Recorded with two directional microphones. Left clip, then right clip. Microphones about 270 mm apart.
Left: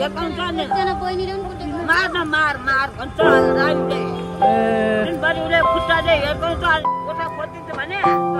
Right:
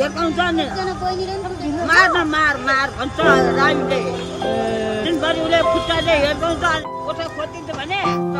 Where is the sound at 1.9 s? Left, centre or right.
Centre.